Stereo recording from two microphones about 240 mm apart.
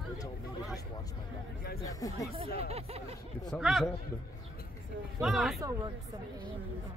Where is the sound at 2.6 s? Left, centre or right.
Right.